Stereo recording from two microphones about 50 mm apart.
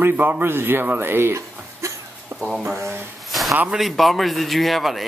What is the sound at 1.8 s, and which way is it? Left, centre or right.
Cough, right.